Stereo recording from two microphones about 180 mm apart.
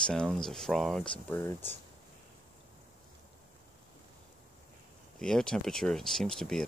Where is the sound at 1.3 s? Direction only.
15° left (ahead or behind).